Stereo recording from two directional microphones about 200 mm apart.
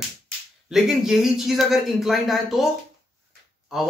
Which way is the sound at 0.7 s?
Centre (ahead or behind).